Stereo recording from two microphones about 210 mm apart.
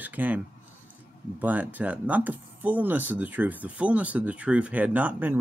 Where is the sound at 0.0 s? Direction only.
10° right (ahead or behind).